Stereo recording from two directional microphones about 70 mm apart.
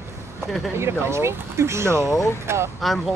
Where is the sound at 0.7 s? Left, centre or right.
Right.